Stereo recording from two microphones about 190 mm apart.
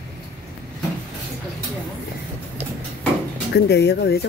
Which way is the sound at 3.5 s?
60° left (ahead or behind).